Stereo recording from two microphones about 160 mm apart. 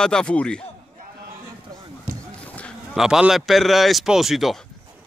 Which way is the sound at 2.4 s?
5° left (ahead or behind).